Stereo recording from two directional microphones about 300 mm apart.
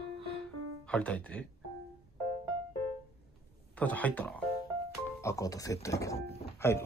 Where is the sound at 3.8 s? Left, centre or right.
Centre.